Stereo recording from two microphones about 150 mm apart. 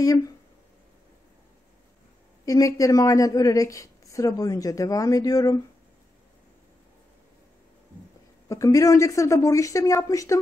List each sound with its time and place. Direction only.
0.0 s speech: 25° left (ahead or behind)
2.4 s speech: 25° left (ahead or behind)
8.5 s speech: 20° left (ahead or behind)